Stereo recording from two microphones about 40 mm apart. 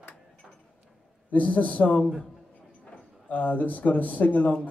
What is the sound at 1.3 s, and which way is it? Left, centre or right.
Speech, left.